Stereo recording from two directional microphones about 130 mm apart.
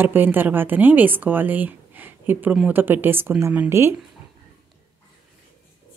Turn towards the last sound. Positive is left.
turn(degrees=-20)  # may be behind; listen again after turning